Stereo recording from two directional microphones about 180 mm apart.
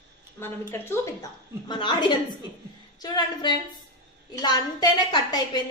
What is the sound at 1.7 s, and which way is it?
A woman's voice, 25° left (ahead or behind).